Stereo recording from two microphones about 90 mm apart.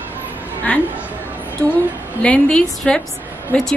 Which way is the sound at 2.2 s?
10° left (ahead or behind).